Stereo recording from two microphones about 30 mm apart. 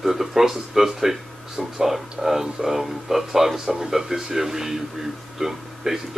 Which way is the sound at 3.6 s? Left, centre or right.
Right.